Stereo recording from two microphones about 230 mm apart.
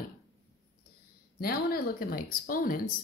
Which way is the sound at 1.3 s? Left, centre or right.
Left.